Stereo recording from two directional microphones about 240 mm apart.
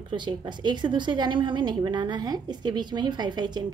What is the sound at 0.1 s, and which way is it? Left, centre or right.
A woman's voice, centre.